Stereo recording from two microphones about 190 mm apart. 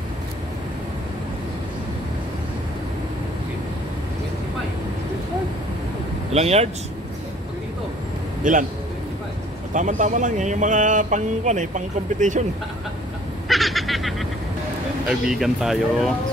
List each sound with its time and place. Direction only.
6.3 s speech: 35° right (ahead or behind)
8.5 s a man's voice: 40° right (ahead or behind)
9.8 s speech: 40° right (ahead or behind)
13.5 s a sound: centre (ahead or behind)
15.0 s speech: centre (ahead or behind)